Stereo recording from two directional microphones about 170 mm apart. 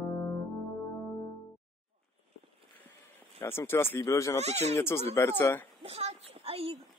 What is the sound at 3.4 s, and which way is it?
Speech, 15° left (ahead or behind).